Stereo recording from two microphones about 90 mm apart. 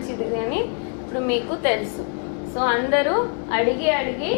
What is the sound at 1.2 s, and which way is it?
A woman's voice, 15° left (ahead or behind).